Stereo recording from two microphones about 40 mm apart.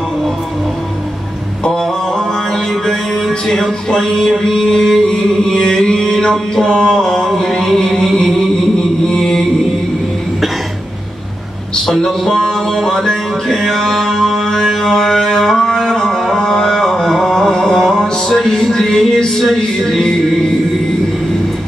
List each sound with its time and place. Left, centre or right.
1.6 s music: centre
9.0 s chant: centre
11.9 s music: centre
16.3 s a sound: centre
18.3 s speech: centre
19.4 s music: centre